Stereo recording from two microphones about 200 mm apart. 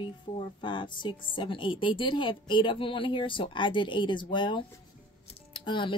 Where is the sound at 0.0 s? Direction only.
25° left (ahead or behind).